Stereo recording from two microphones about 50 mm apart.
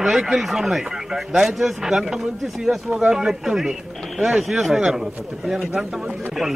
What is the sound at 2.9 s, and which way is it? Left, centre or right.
Speech, right.